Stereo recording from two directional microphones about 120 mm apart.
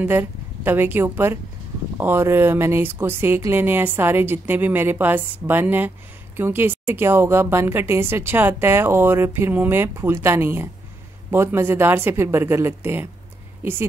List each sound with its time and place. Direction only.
0.0 s a woman's voice: 15° right (ahead or behind)